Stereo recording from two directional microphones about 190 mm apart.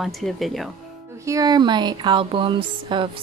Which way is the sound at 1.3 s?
20° right (ahead or behind).